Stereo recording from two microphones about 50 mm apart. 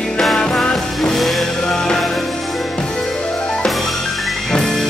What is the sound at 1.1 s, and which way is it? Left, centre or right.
Music, centre.